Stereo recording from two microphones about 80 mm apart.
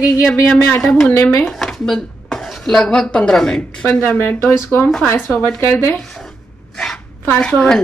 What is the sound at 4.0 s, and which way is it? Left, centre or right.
Speech, left.